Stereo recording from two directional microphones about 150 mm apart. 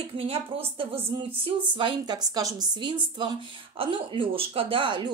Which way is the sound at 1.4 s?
35° right (ahead or behind).